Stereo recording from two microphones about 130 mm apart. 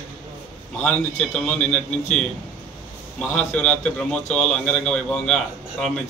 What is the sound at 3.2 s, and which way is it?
A man's voice, 10° left (ahead or behind).